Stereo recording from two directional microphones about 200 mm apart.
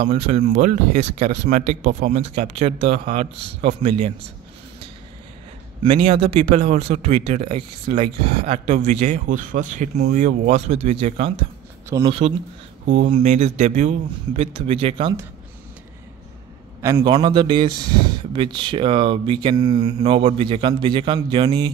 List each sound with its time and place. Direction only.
0.0 s speech: 30° right (ahead or behind)
6.2 s speech: 30° right (ahead or behind)
16.8 s speech: 20° right (ahead or behind)